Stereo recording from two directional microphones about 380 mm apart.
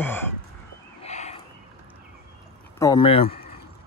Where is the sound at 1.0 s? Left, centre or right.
Centre.